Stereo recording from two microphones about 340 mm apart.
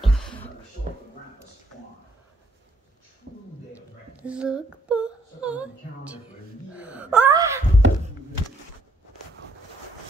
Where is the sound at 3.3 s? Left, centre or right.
Right.